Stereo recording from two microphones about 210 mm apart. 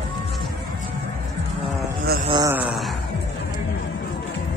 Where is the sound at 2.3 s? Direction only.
20° right (ahead or behind).